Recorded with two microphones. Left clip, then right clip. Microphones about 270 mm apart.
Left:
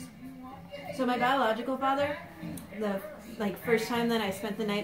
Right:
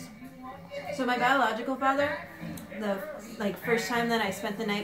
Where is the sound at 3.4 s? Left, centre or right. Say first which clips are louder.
Even; centre.